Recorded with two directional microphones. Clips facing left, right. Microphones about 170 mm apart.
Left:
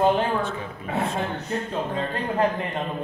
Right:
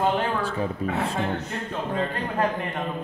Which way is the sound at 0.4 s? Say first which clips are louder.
Right 3 dB; 35° right (ahead or behind).